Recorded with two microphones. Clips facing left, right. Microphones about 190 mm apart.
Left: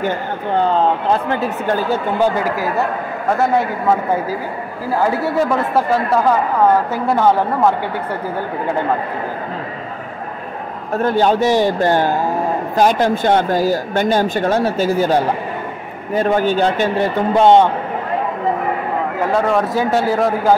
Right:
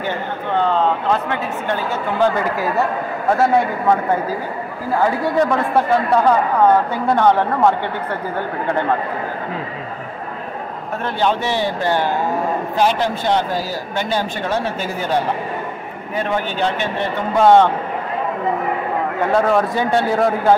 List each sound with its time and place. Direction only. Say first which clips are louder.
5.0 s speech: even; 5° left (ahead or behind)
11.0 s speech: left 6 dB; 40° left (ahead or behind)
16.2 s speech: left 6 dB; 40° left (ahead or behind)
17.4 s a man's voice: left 1 dB; 20° left (ahead or behind)
19.1 s speech: right 1 dB; centre (ahead or behind)